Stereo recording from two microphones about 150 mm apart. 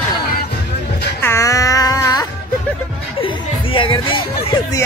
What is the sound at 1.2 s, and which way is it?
Music, 20° left (ahead or behind).